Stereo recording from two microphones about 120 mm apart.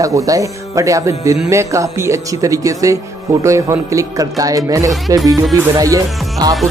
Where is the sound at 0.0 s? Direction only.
30° right (ahead or behind).